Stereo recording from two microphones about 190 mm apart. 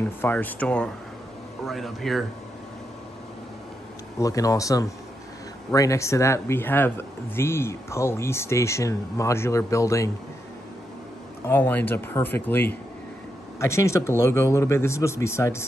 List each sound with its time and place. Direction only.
0.2 s speech: 10° left (ahead or behind)
4.2 s speech: 20° left (ahead or behind)
11.4 s speech: 10° left (ahead or behind)